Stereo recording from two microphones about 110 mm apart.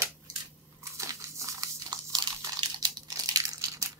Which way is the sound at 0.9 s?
30° right (ahead or behind).